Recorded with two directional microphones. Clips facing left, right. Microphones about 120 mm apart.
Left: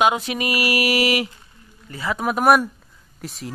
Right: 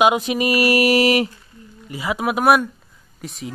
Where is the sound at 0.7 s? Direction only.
40° right (ahead or behind).